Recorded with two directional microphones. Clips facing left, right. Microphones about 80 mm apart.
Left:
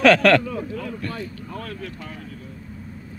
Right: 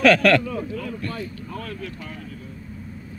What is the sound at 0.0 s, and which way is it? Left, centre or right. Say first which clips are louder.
Speech: left 1 dB; left.